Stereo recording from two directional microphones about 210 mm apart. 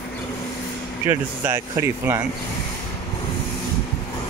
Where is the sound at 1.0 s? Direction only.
10° right (ahead or behind).